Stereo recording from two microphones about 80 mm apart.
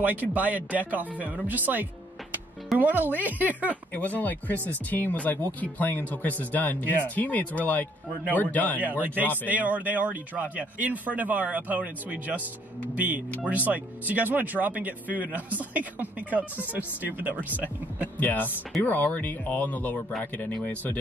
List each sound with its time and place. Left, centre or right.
0.0 s speech: right
3.9 s speech: centre
9.0 s speech: right
18.2 s speech: left